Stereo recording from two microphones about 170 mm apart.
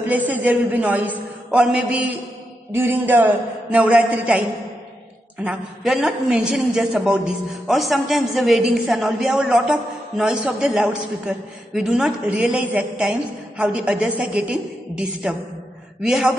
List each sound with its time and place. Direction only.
0.0 s a man's voice: 10° right (ahead or behind)